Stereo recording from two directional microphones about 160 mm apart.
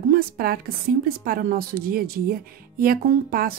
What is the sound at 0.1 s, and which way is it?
A woman's voice, 70° right (ahead or behind).